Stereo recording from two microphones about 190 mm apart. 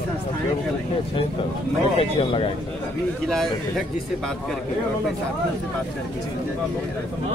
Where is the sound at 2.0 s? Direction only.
30° left (ahead or behind).